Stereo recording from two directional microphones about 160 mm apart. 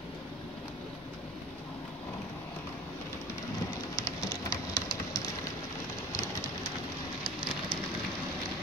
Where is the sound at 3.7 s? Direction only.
25° left (ahead or behind).